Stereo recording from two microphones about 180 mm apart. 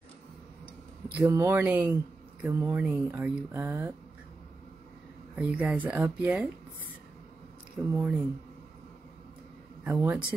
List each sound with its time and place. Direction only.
1.0 s speech: 10° right (ahead or behind)
5.3 s speech: 5° right (ahead or behind)
7.8 s speech: 10° right (ahead or behind)
9.8 s speech: 10° right (ahead or behind)